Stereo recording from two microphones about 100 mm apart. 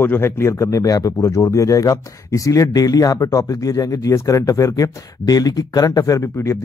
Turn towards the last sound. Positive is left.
turn(degrees=30)  # may be behind; listen again after turning